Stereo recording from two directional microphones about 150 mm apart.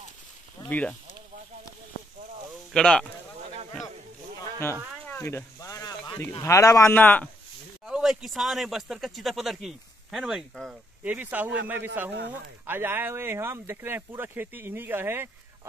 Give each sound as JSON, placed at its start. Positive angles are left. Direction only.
{"t": 0.7, "sound": "speech", "side_deg": 10}
{"t": 2.7, "sound": "speech", "side_deg": 5}
{"t": 4.4, "sound": "a sound", "side_deg": 15}
{"t": 5.0, "sound": "speech", "side_deg": 15}
{"t": 7.8, "sound": "speech", "side_deg": -5}
{"t": 11.1, "sound": "speech", "side_deg": -10}